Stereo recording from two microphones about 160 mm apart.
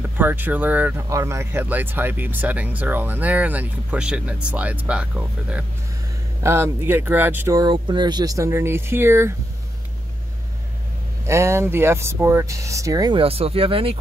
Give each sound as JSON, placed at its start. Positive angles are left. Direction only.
{"t": 0.2, "sound": "speech", "side_deg": -10}
{"t": 11.2, "sound": "speech", "side_deg": -15}
{"t": 13.2, "sound": "speech", "side_deg": -35}